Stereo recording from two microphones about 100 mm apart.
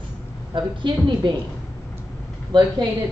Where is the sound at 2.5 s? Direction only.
50° right (ahead or behind).